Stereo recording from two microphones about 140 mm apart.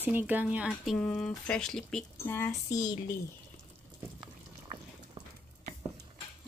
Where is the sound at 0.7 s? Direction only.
5° left (ahead or behind).